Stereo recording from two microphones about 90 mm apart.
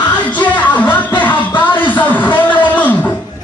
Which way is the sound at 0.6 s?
20° left (ahead or behind).